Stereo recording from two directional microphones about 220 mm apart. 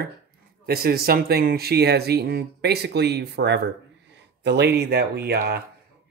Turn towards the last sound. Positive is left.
turn(degrees=-50)  # may be behind; listen again after turning